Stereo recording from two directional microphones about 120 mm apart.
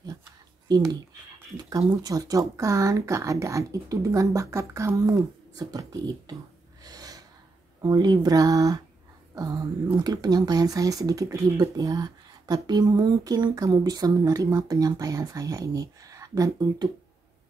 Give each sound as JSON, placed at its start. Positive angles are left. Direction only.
{"t": 0.7, "sound": "speech", "side_deg": -35}
{"t": 6.8, "sound": "gasp", "side_deg": -30}
{"t": 7.8, "sound": "speech", "side_deg": -35}